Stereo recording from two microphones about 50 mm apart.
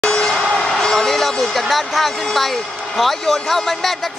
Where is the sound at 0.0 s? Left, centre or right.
Centre.